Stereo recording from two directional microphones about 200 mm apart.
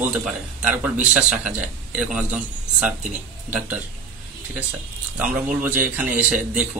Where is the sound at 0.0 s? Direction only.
5° right (ahead or behind).